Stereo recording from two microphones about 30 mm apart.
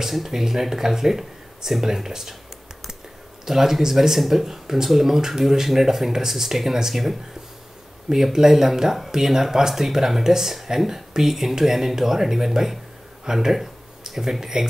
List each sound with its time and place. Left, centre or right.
0.0 s speech: centre
3.4 s speech: centre